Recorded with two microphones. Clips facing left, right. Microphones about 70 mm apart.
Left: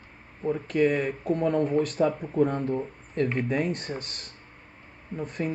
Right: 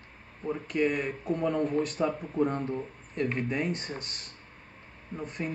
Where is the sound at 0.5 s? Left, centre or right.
Left.